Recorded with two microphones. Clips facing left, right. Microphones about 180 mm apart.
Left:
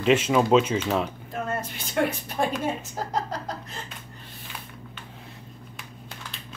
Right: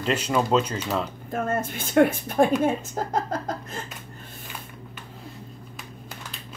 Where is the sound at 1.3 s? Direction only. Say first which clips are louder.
Right 7 dB; 50° right (ahead or behind).